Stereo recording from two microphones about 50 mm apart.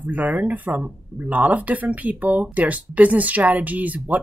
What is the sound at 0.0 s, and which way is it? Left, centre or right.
Speech, right.